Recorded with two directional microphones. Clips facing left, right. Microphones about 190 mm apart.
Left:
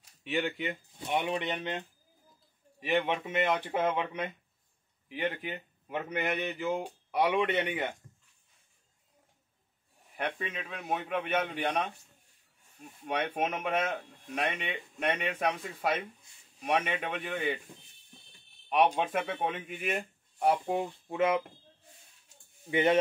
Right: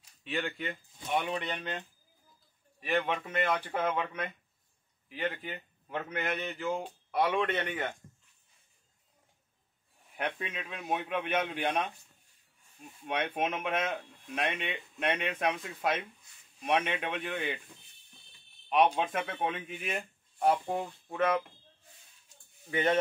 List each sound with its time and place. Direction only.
0.2 s speech: 15° left (ahead or behind)
10.1 s a man's voice: centre (ahead or behind)
13.3 s a man's voice: centre (ahead or behind)
18.7 s speech: 10° left (ahead or behind)
22.7 s speech: 20° left (ahead or behind)